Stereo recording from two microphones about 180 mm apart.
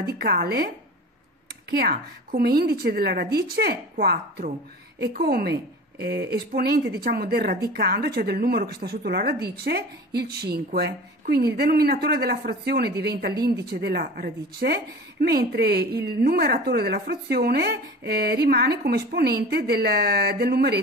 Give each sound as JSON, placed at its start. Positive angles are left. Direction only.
{"t": 0.2, "sound": "a woman's voice", "side_deg": -60}
{"t": 1.7, "sound": "a woman's voice", "side_deg": -60}